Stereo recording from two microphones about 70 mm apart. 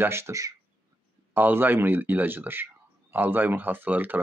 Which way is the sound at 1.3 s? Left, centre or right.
Right.